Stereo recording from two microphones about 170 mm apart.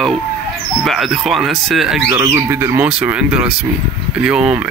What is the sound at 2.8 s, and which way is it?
Speech, 5° right (ahead or behind).